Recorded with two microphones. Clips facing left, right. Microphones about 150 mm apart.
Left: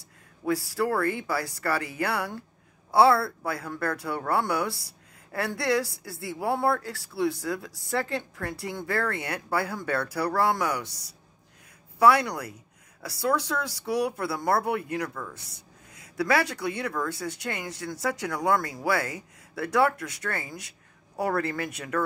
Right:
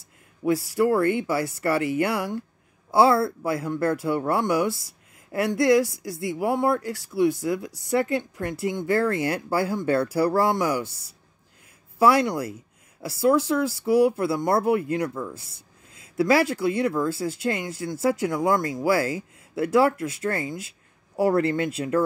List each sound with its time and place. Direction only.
0.7 s speech: 20° right (ahead or behind)
10.9 s a man's voice: 75° left (ahead or behind)
12.0 s speech: 25° right (ahead or behind)